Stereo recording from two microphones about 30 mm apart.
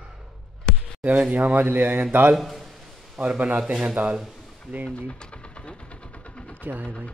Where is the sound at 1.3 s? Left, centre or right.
Right.